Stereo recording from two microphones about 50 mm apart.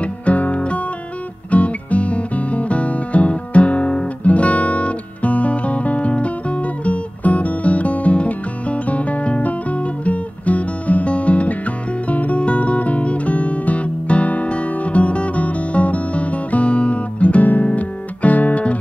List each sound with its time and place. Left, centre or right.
0.0 s music: left